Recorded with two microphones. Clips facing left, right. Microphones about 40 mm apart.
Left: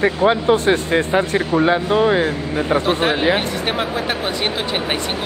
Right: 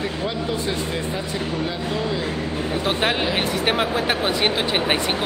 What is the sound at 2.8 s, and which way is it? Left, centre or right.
Speech, centre.